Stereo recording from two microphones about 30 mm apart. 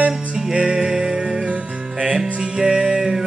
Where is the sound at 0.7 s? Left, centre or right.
Centre.